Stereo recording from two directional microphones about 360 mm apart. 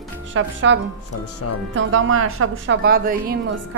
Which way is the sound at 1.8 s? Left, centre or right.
Right.